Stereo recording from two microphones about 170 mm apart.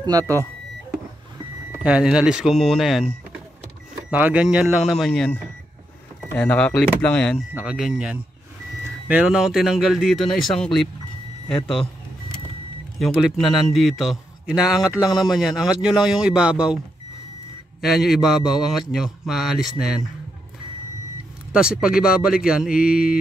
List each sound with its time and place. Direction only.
0.0 s speech: 20° right (ahead or behind)
1.8 s a man's voice: 5° right (ahead or behind)
13.0 s a man's voice: centre (ahead or behind)
17.8 s a man's voice: centre (ahead or behind)
21.5 s a man's voice: 5° right (ahead or behind)